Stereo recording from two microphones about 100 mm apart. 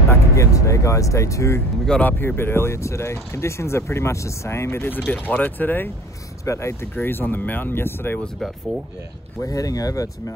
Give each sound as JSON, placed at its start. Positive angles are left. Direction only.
{"t": 0.1, "sound": "speech", "side_deg": 30}
{"t": 1.9, "sound": "speech", "side_deg": 15}
{"t": 6.4, "sound": "speech", "side_deg": 30}
{"t": 9.4, "sound": "speech", "side_deg": 35}